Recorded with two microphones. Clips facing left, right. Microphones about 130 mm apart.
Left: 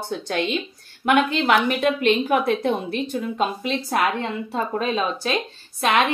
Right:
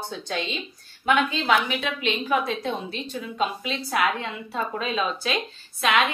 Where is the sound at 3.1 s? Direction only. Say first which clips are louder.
Left 1 dB; 45° left (ahead or behind).